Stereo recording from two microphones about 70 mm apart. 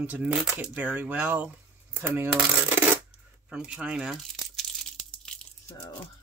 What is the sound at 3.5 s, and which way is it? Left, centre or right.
Speech, centre.